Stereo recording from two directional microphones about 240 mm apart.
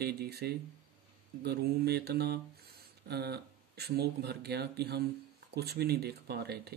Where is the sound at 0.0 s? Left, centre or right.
Right.